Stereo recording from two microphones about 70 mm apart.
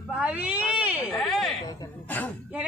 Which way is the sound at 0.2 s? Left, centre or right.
Centre.